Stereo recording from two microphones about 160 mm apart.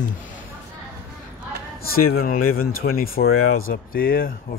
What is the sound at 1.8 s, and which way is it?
Speech, 70° left (ahead or behind).